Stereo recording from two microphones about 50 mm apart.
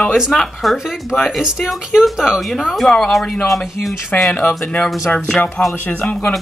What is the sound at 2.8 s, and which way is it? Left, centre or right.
Speech, centre.